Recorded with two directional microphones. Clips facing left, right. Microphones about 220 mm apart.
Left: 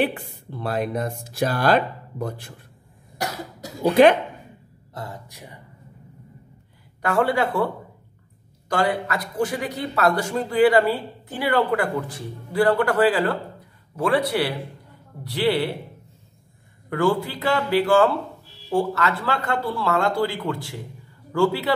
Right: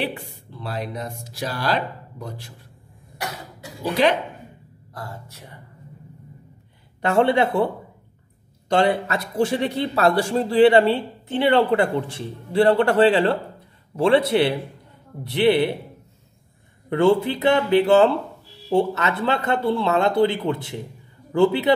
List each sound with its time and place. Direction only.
0.0 s speech: 50° left (ahead or behind)
4.9 s speech: 20° left (ahead or behind)
7.0 s a man's voice: 25° right (ahead or behind)
16.9 s a man's voice: 25° right (ahead or behind)